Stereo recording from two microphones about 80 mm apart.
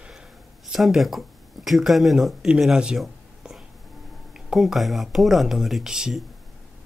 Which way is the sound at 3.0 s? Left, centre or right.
Centre.